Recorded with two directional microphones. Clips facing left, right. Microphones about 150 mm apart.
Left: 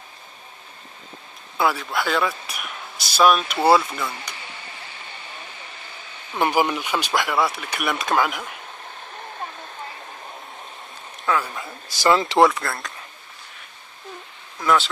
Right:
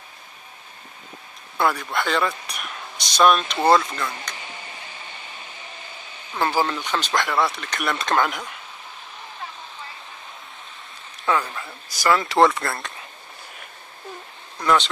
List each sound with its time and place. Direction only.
1.6 s speech: 5° left (ahead or behind)
6.3 s speech: 15° left (ahead or behind)
11.3 s a sound: centre (ahead or behind)
11.9 s speech: 25° left (ahead or behind)
12.4 s speech: centre (ahead or behind)
14.6 s speech: centre (ahead or behind)